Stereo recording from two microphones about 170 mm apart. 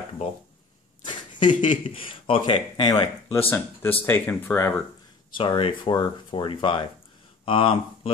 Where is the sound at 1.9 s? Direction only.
30° left (ahead or behind).